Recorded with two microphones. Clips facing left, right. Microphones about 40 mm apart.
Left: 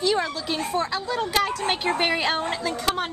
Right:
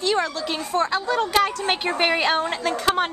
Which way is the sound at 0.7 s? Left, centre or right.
Right.